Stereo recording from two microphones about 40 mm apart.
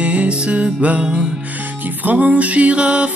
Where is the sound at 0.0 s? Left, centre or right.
Right.